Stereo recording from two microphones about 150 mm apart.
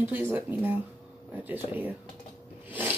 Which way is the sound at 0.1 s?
10° right (ahead or behind).